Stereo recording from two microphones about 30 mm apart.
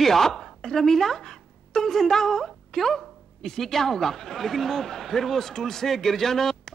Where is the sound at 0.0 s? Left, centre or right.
Centre.